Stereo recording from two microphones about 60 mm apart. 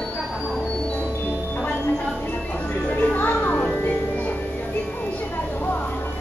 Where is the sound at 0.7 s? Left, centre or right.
Centre.